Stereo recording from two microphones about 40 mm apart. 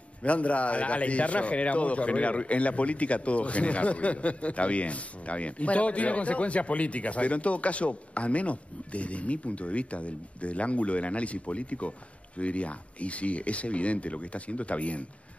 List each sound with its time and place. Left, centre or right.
0.2 s a man's voice: left